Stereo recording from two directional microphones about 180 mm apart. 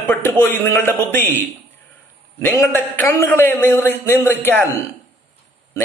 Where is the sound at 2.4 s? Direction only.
10° left (ahead or behind).